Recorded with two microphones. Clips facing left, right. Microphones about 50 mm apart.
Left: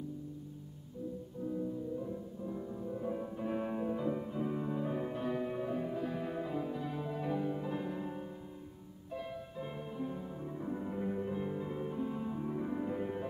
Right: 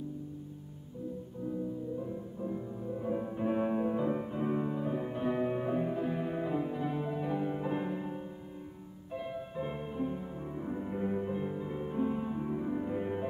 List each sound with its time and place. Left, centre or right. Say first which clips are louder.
1.5 s music: right 1 dB; centre; by 4.6 s right
4.7 s music: right 2 dB; centre
5.2 s music: right 4 dB; right
7.4 s music: right 3 dB; right
7.9 s music: right 2 dB; centre
11.9 s music: right 5 dB; right
12.5 s music: right 2 dB; centre
13.0 s music: right 3 dB; right